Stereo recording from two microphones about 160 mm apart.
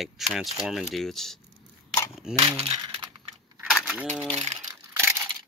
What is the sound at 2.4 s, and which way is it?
Speech, 35° right (ahead or behind).